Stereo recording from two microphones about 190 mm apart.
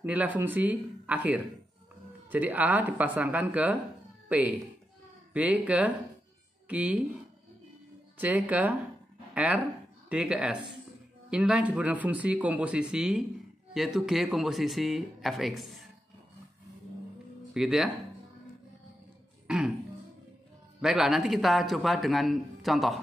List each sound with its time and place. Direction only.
0.0 s speech: 10° right (ahead or behind)
8.2 s speech: 10° right (ahead or behind)
17.6 s speech: 5° right (ahead or behind)
19.4 s throat clearing: 5° right (ahead or behind)
20.8 s speech: 5° right (ahead or behind)